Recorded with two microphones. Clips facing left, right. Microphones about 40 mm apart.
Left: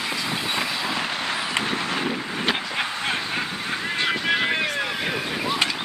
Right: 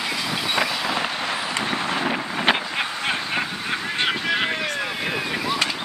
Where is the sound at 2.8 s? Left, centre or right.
Centre.